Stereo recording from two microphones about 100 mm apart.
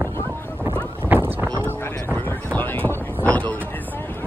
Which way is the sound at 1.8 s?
20° left (ahead or behind).